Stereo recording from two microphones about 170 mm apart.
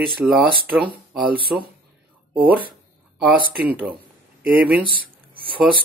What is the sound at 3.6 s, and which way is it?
Speech, 10° right (ahead or behind).